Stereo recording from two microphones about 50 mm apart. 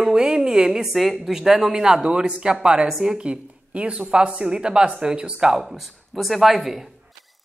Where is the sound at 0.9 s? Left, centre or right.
Centre.